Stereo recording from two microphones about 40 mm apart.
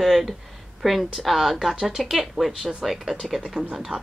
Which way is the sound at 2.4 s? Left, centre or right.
Right.